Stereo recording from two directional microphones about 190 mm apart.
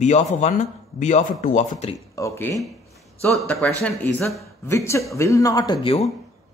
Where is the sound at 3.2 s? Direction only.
Centre (ahead or behind); by 6.1 s 30° left (ahead or behind).